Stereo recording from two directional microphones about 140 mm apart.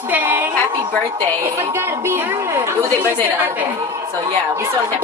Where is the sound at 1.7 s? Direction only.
15° right (ahead or behind).